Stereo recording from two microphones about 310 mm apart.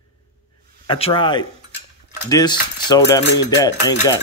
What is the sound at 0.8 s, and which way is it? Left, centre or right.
Speech, centre.